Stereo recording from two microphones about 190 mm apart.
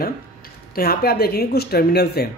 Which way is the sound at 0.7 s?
55° left (ahead or behind).